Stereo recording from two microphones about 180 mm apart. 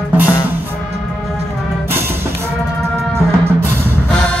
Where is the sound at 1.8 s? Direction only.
15° right (ahead or behind).